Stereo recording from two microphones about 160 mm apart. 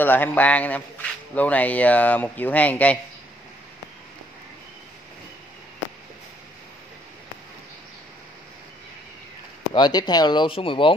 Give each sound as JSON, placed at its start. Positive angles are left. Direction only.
{"t": 0.0, "sound": "a man's voice", "side_deg": 10}
{"t": 9.8, "sound": "speech", "side_deg": 25}